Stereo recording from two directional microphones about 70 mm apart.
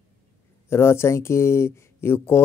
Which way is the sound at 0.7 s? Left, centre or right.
Left.